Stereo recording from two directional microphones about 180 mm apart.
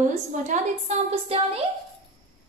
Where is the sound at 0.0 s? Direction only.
40° right (ahead or behind).